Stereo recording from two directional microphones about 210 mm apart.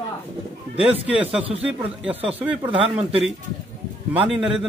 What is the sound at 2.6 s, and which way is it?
Speech, 25° right (ahead or behind).